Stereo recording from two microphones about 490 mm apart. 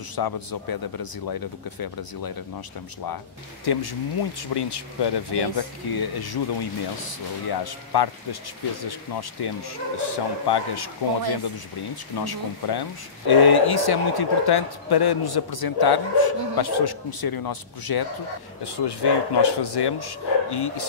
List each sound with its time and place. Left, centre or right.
0.1 s speech: left
3.6 s speech: left
9.4 s speech: left
12.3 s speech: left